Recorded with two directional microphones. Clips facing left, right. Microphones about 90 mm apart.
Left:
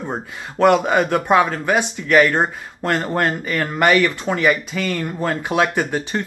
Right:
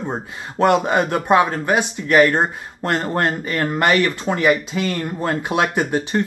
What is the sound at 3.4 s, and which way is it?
Speech, 15° right (ahead or behind).